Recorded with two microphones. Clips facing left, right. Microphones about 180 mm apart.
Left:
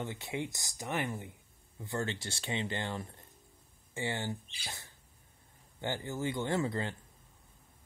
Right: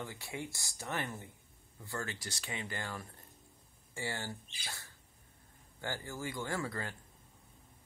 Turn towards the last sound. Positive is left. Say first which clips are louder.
# left 6 dB
turn(degrees=20)  # may be behind; listen again after turning